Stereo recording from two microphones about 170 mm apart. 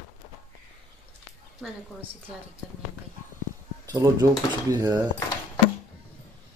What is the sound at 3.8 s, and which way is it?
Speech, 20° right (ahead or behind).